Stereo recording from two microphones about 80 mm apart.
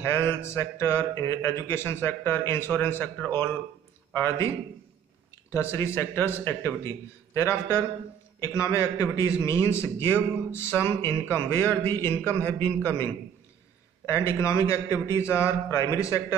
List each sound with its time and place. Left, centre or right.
0.0 s a man's voice: left
5.5 s speech: left
12.2 s speech: centre
14.0 s speech: left